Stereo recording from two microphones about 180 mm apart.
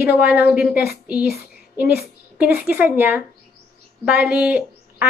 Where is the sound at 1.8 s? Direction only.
60° left (ahead or behind).